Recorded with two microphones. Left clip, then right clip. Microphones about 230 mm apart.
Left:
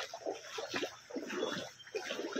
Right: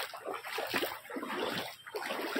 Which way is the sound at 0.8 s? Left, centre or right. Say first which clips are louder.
Right 4 dB; right.